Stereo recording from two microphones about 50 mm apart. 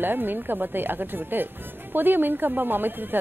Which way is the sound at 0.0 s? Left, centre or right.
Right.